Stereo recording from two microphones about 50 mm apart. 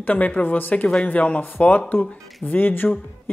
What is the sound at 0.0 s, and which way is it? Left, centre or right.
Speech, left.